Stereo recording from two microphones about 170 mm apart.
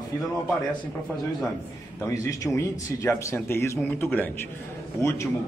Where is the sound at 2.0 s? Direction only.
20° left (ahead or behind).